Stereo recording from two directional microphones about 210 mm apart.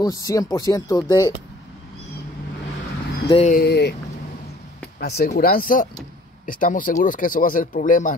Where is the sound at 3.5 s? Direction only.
50° left (ahead or behind).